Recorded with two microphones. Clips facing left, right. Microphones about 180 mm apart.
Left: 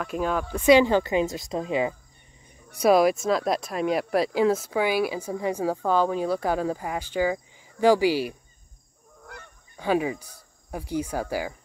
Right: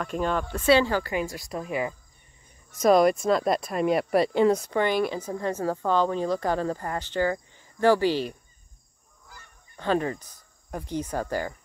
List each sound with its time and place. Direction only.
0.0 s speech: 5° left (ahead or behind); by 2.0 s 20° left (ahead or behind)
2.7 s speech: 10° left (ahead or behind)
9.2 s goose: 65° left (ahead or behind)
9.8 s speech: 10° left (ahead or behind)